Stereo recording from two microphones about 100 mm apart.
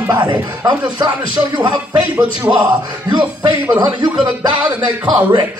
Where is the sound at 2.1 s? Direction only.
15° right (ahead or behind).